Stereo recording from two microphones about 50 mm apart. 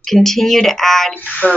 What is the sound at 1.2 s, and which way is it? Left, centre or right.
Speech, left.